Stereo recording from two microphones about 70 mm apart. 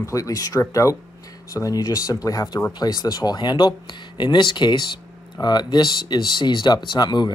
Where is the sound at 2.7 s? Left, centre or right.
Left.